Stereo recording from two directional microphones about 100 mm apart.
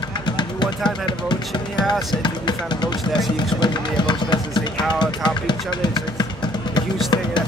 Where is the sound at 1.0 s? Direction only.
50° left (ahead or behind).